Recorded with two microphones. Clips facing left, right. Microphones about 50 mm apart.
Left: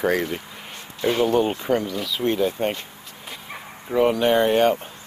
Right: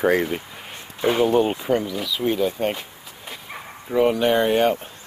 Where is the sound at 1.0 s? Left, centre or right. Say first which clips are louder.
Right 1 dB; centre.